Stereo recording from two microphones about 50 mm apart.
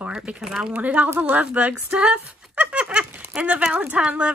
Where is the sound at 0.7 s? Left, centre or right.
Right.